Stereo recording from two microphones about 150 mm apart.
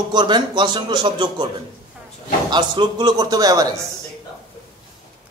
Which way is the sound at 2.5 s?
30° right (ahead or behind).